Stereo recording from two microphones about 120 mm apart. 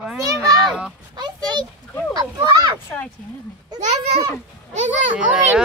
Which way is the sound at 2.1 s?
35° right (ahead or behind).